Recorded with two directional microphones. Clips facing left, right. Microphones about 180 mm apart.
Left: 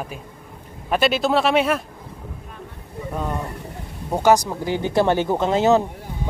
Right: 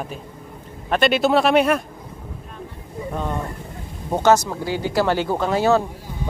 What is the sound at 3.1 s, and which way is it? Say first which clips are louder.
Speech: even; 5° left (ahead or behind).